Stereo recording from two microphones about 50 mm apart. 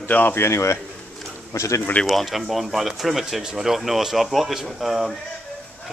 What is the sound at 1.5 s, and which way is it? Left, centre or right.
Speech, left.